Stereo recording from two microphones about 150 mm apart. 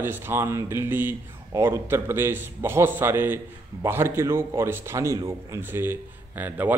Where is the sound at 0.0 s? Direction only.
15° right (ahead or behind).